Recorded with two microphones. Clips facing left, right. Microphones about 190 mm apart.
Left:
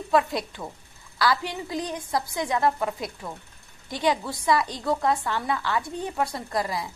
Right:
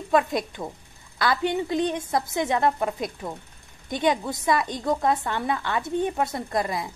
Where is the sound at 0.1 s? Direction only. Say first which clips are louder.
Right 1 dB; 20° right (ahead or behind).